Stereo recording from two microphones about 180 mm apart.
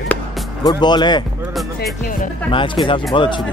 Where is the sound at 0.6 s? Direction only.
25° left (ahead or behind).